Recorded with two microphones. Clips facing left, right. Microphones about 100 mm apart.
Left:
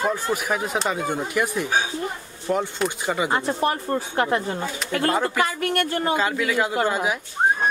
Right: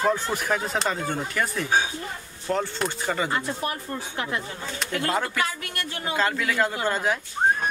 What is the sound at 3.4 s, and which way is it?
Speech, 40° left (ahead or behind).